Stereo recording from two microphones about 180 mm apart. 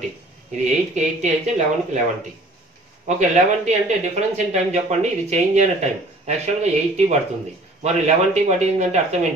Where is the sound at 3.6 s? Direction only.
40° right (ahead or behind).